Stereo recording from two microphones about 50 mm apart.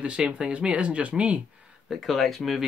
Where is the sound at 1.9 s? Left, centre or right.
Centre.